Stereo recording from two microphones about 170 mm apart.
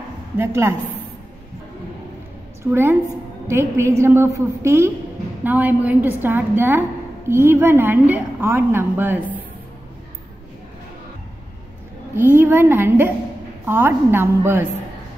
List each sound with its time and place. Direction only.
0.4 s a woman's voice: 15° right (ahead or behind)
2.6 s a woman's voice: 15° right (ahead or behind)
12.2 s a woman's voice: 10° right (ahead or behind)